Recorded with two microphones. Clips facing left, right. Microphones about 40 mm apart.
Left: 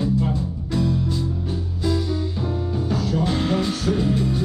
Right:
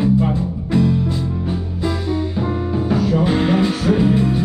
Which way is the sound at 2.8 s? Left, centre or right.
Right.